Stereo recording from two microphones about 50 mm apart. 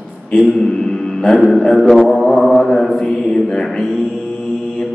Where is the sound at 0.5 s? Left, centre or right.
Centre.